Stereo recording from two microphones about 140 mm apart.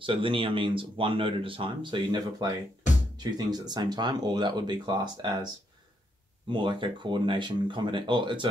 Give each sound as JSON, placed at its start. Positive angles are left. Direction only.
{"t": 0.0, "sound": "speech", "side_deg": -40}
{"t": 6.5, "sound": "speech", "side_deg": -35}